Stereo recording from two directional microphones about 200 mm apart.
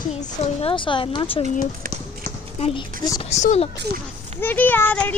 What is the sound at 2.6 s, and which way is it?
Speech, 25° left (ahead or behind).